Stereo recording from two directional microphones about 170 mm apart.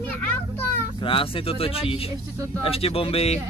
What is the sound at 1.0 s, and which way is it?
Speech, 30° left (ahead or behind).